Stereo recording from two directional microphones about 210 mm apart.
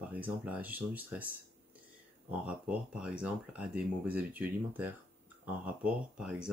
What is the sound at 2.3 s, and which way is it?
Speech, 5° right (ahead or behind).